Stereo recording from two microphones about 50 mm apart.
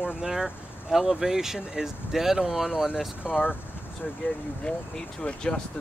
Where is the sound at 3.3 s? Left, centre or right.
Left.